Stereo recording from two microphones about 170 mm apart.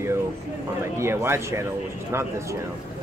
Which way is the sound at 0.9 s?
15° right (ahead or behind).